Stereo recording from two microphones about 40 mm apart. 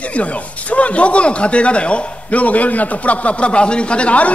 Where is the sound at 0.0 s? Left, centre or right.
Left.